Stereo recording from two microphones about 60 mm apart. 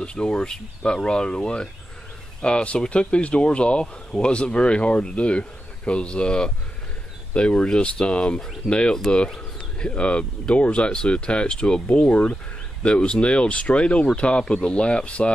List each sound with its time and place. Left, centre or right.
0.0 s speech: centre